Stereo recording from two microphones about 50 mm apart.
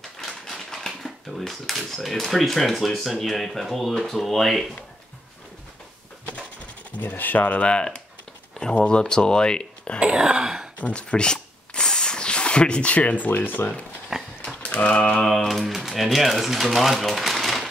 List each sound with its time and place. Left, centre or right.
0.2 s speech: centre
7.0 s speech: left
7.6 s speech: centre
9.9 s wail: centre
10.8 s a sound: left
14.1 s dog: centre
14.6 s typewriter: left
15.2 s speech: centre